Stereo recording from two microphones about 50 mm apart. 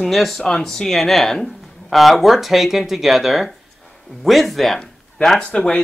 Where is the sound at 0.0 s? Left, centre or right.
Centre.